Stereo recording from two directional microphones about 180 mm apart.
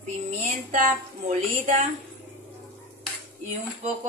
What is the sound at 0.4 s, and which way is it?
A woman's voice, 40° right (ahead or behind).